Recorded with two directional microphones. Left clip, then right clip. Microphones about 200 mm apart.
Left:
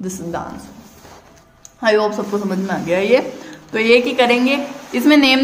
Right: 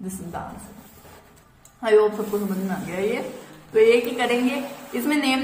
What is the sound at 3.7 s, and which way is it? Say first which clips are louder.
Speech: left 4 dB; 50° left (ahead or behind).